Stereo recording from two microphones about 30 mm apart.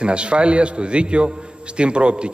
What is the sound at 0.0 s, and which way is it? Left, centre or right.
A man's voice, right.